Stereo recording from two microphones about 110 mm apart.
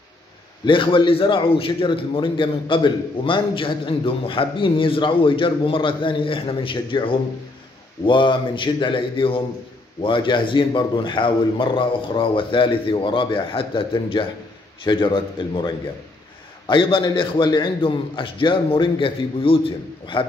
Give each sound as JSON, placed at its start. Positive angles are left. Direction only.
{"t": 0.7, "sound": "a man's voice", "side_deg": 50}